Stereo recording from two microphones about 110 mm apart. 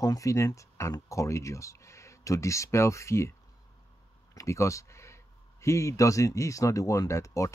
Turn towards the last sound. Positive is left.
turn(degrees=30)  # may be behind; listen again after turning